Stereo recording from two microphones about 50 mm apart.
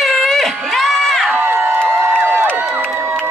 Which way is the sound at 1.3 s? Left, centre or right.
Right.